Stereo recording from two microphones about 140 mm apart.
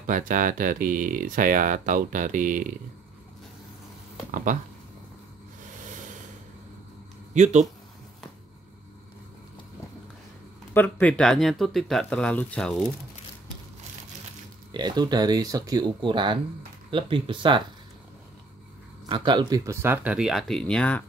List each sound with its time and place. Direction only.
0.0 s speech: 70° right (ahead or behind)
7.3 s speech: 55° right (ahead or behind)
10.7 s speech: 15° left (ahead or behind)
14.7 s speech: 30° right (ahead or behind)
19.0 s speech: 35° right (ahead or behind)
19.6 s speech: 20° right (ahead or behind); by 21.0 s 10° left (ahead or behind)